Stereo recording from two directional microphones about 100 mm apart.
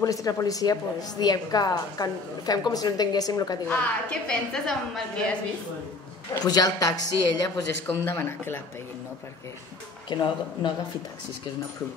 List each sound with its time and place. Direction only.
0.0 s a woman's voice: 35° left (ahead or behind)
3.6 s a woman's voice: 10° left (ahead or behind)
6.4 s a woman's voice: 40° left (ahead or behind)
7.9 s speech: 25° left (ahead or behind)
10.1 s speech: 50° left (ahead or behind)